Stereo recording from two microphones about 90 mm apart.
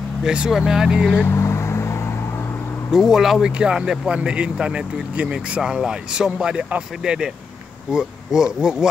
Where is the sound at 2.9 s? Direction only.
5° right (ahead or behind).